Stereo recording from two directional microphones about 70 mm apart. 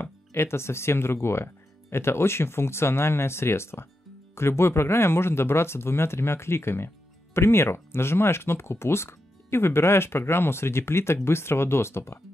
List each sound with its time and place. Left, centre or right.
0.0 s speech: left